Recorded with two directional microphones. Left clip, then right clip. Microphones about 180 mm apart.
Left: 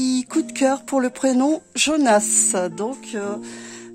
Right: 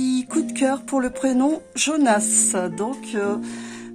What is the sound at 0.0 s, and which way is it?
Speech, 45° left (ahead or behind).